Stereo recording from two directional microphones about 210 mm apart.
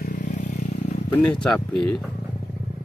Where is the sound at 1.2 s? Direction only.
5° left (ahead or behind).